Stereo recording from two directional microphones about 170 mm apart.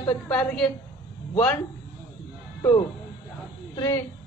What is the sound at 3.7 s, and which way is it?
Speech, 20° left (ahead or behind).